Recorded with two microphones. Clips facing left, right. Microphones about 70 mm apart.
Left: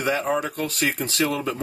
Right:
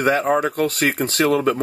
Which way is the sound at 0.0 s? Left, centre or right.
Right.